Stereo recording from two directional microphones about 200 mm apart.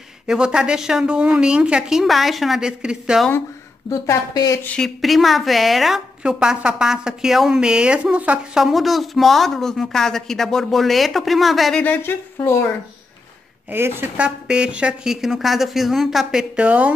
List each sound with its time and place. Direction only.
0.3 s a woman's voice: 5° right (ahead or behind)
3.9 s a woman's voice: 15° left (ahead or behind)
4.6 s a woman's voice: centre (ahead or behind)
13.7 s a woman's voice: 10° right (ahead or behind)